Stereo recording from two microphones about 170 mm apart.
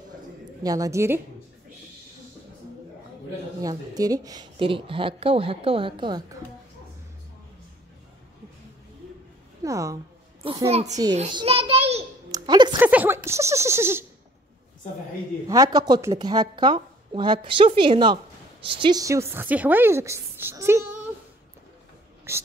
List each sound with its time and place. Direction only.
0.7 s speech: 20° right (ahead or behind)
3.6 s a woman's voice: 20° right (ahead or behind)
9.6 s a woman's voice: 20° right (ahead or behind)
10.4 s a woman's voice: 35° right (ahead or behind)
11.3 s a sound: 35° right (ahead or behind)
12.3 s music: 25° right (ahead or behind)
12.7 s speech: 10° right (ahead or behind)
15.4 s speech: 20° right (ahead or behind)
22.3 s speech: 15° right (ahead or behind)